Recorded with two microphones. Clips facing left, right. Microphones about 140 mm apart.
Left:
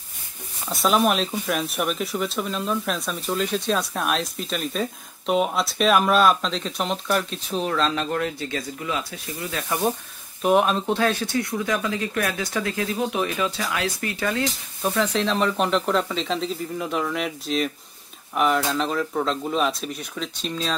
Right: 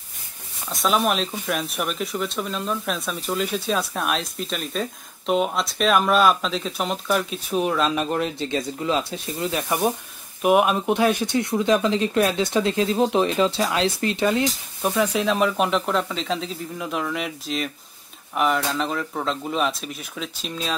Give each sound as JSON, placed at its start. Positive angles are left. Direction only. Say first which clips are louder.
{"t": 0.7, "sound": "speech", "louder": "left 1 dB", "side_deg": 0}
{"t": 10.4, "sound": "speech", "louder": "right 1 dB", "side_deg": -10}